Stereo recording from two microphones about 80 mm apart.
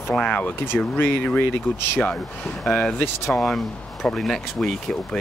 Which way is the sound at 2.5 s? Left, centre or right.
Centre.